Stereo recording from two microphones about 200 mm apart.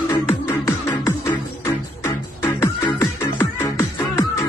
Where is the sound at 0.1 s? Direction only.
15° left (ahead or behind).